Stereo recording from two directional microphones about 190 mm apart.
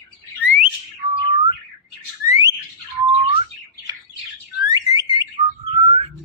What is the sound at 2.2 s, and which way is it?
Bird, 20° right (ahead or behind).